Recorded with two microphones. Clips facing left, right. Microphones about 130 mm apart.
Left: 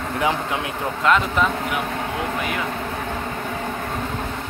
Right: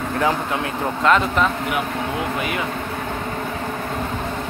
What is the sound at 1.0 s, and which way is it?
Speech, centre (ahead or behind).